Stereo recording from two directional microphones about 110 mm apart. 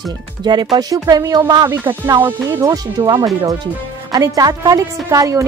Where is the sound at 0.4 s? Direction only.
45° right (ahead or behind).